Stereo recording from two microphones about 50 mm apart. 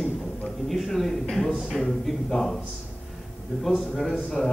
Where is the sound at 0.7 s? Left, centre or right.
Centre.